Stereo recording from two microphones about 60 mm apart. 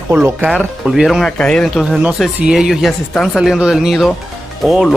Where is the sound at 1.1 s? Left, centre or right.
Centre.